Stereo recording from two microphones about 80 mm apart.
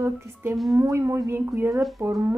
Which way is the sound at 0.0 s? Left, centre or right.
Right.